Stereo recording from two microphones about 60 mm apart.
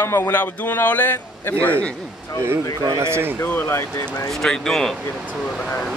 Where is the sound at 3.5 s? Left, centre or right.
Left.